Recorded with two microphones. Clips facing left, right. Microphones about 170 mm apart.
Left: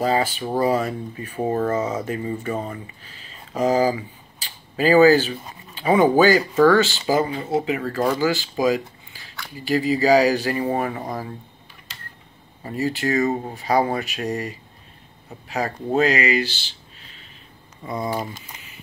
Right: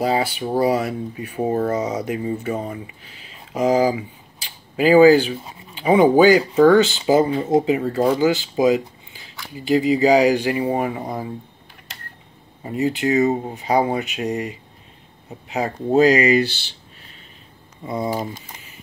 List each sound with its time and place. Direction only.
0.0 s speech: 10° right (ahead or behind)
12.6 s speech: 20° right (ahead or behind)
16.0 s speech: 35° right (ahead or behind)
17.8 s speech: 25° right (ahead or behind)